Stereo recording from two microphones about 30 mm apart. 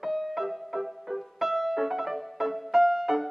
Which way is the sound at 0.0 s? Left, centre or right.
Centre.